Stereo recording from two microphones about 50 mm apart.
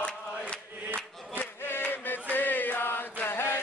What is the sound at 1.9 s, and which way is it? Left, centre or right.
Chant, left.